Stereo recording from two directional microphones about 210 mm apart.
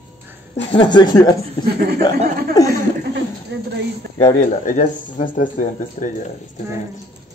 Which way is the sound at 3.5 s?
55° right (ahead or behind).